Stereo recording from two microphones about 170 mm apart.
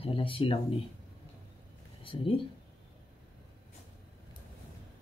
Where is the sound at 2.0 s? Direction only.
30° left (ahead or behind).